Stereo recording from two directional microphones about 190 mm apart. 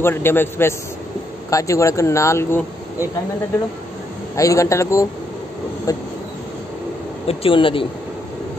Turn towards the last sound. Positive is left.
turn(degrees=25)  # may be behind; listen again after turning